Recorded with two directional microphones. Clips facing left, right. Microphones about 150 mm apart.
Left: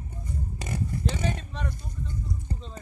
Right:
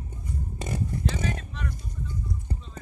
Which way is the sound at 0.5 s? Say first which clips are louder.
Right 3 dB; 25° right (ahead or behind).